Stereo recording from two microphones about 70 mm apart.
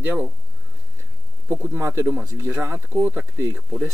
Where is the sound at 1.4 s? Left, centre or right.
Right.